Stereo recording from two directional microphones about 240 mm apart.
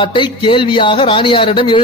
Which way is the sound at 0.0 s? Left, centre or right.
Centre.